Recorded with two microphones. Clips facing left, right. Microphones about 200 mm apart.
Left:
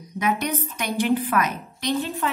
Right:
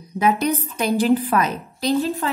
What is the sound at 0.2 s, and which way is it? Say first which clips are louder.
A woman's voice: right 5 dB; 35° right (ahead or behind).